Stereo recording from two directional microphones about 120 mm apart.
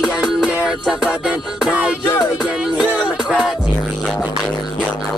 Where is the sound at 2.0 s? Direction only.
25° left (ahead or behind).